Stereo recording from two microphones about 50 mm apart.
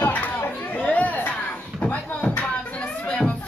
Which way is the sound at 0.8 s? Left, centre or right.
Left.